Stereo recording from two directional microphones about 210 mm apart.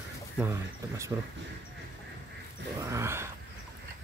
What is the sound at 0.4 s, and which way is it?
Speech, 15° right (ahead or behind).